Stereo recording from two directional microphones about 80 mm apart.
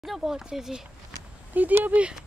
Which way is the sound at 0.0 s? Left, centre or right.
Centre.